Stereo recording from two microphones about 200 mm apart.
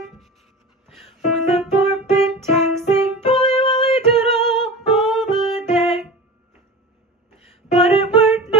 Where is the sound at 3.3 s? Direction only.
25° left (ahead or behind).